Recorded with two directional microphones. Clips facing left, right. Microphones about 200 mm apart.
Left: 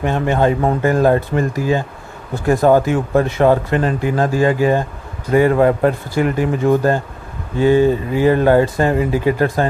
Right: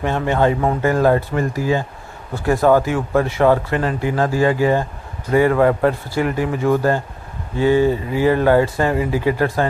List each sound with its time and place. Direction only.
0.0 s a man's voice: 15° left (ahead or behind)
7.5 s speech: 15° right (ahead or behind)
7.9 s speech: 20° left (ahead or behind)